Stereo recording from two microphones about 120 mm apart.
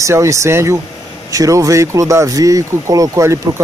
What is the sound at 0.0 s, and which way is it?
Speech, 25° right (ahead or behind).